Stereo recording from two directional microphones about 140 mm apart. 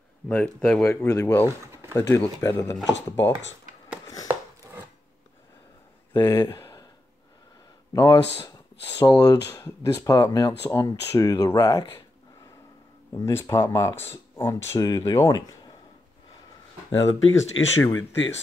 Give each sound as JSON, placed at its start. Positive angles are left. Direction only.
{"t": 0.3, "sound": "speech", "side_deg": 10}
{"t": 1.0, "sound": "speech", "side_deg": 20}
{"t": 6.1, "sound": "speech", "side_deg": 25}
{"t": 6.5, "sound": "a sound", "side_deg": 25}
{"t": 7.9, "sound": "speech", "side_deg": 25}
{"t": 13.2, "sound": "speech", "side_deg": 20}
{"t": 17.3, "sound": "speech", "side_deg": 20}